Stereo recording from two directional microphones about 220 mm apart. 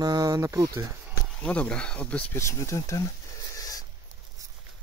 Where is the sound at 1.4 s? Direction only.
5° left (ahead or behind).